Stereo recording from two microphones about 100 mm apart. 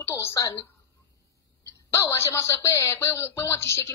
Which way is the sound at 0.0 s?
30° left (ahead or behind).